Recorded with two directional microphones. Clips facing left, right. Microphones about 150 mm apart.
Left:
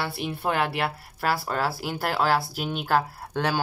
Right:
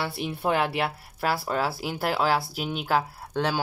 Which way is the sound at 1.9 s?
Centre (ahead or behind).